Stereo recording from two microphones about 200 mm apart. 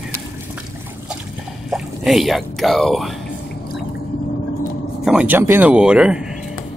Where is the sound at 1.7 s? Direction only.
Centre (ahead or behind).